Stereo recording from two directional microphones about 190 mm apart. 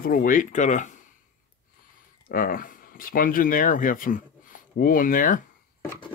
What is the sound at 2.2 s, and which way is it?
Speech, 50° left (ahead or behind).